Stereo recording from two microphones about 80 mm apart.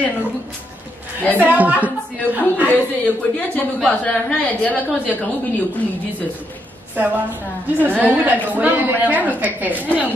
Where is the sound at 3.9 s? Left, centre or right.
Centre.